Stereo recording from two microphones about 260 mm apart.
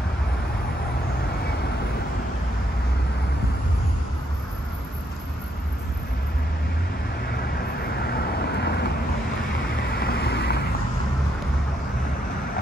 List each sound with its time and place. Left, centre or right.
7.2 s vehicle: left